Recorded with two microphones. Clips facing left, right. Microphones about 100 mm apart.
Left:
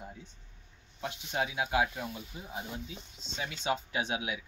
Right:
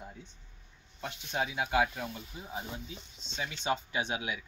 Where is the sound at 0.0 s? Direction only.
10° left (ahead or behind).